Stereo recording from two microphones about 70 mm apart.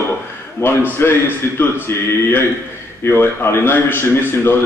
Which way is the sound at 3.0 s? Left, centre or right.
Left.